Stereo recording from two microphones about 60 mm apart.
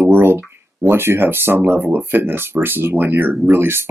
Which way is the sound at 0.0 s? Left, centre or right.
Right.